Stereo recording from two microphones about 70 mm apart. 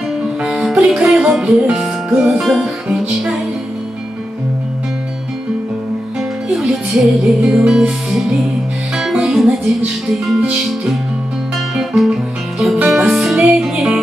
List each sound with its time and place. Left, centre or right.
0.4 s music: centre
2.4 s music: centre
6.5 s music: centre
11.7 s guitar: centre
12.8 s music: centre